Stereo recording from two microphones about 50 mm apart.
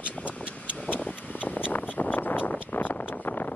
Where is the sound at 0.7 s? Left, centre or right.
Left.